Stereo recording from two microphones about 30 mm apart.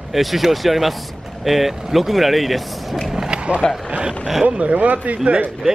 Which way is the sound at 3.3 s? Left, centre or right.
Right.